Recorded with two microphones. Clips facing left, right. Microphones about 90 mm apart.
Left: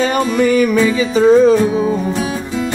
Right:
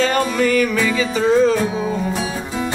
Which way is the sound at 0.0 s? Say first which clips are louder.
Left 3 dB; 20° left (ahead or behind).